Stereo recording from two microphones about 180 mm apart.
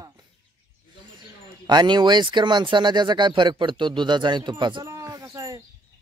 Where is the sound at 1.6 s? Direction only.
25° right (ahead or behind).